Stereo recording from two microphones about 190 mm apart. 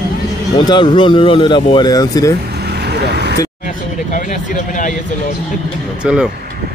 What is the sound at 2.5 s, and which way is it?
Vehicle, 60° right (ahead or behind).